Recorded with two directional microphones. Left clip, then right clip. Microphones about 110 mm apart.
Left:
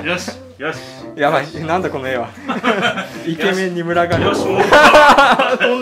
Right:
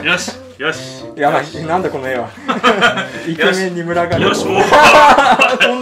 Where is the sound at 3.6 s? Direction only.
15° left (ahead or behind).